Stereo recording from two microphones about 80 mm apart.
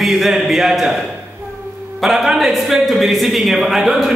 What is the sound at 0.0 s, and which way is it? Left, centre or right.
Speech, centre.